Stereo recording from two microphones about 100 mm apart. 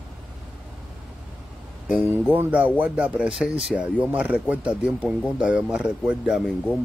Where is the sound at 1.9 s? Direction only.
15° right (ahead or behind).